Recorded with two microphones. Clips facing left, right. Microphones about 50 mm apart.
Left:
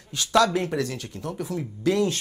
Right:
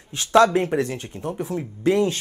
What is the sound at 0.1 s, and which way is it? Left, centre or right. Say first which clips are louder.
Speech: right 4 dB; right.